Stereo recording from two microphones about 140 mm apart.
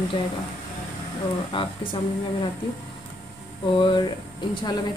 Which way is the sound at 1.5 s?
40° left (ahead or behind).